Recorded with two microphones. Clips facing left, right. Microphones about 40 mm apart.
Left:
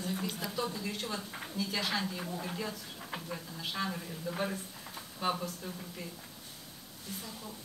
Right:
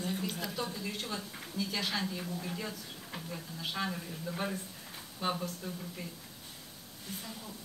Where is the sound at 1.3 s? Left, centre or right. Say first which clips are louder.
Left 2 dB; centre.